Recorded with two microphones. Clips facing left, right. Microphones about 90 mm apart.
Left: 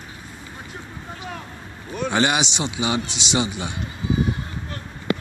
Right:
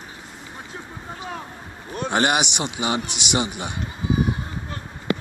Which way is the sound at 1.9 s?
50° right (ahead or behind).